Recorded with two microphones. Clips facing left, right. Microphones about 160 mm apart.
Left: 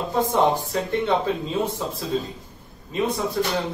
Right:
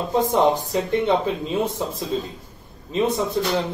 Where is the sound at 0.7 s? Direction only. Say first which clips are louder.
Right 2 dB; 20° right (ahead or behind).